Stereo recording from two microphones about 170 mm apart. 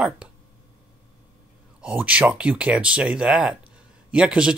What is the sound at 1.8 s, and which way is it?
Speech, 5° right (ahead or behind).